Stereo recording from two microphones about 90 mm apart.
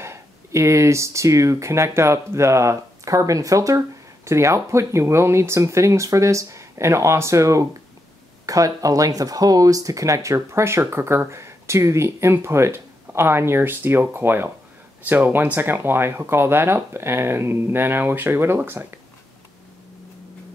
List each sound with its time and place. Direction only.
0.0 s speech: 30° right (ahead or behind)